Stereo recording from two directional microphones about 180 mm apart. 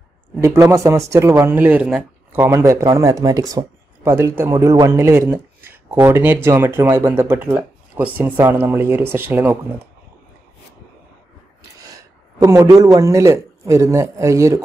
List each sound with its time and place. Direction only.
0.4 s speech: 15° right (ahead or behind)
11.9 s a man's voice: 20° right (ahead or behind)